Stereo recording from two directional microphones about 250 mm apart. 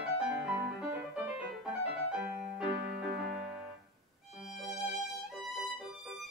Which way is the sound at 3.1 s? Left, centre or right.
Right.